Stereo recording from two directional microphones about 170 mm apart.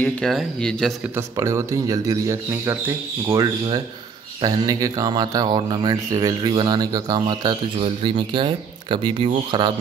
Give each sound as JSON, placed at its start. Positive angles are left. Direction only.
{"t": 0.0, "sound": "speech", "side_deg": 0}
{"t": 1.1, "sound": "speech", "side_deg": -15}
{"t": 4.4, "sound": "speech", "side_deg": -20}